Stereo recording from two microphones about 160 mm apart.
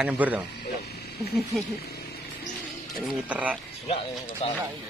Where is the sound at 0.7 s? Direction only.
90° left.